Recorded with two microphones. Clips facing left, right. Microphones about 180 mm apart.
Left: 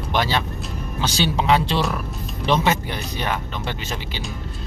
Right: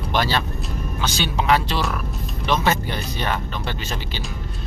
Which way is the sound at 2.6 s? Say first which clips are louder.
Even; 15° left (ahead or behind).